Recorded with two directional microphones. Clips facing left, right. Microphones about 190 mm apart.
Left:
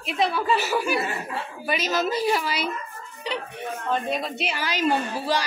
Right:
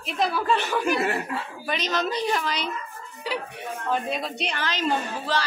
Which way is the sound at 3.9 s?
Centre (ahead or behind).